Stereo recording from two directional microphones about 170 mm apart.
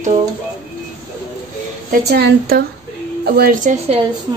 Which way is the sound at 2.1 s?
65° right (ahead or behind).